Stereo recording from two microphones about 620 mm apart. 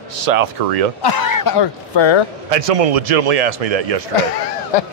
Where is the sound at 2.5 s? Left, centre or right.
Right.